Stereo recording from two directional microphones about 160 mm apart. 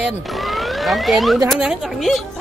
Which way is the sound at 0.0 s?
Centre (ahead or behind).